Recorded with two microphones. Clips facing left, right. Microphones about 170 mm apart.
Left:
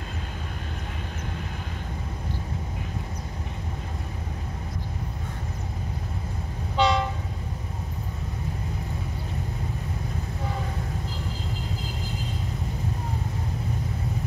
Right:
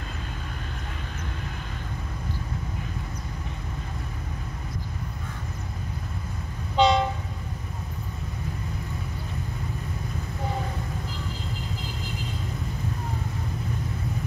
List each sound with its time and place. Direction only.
6.8 s train: 20° right (ahead or behind)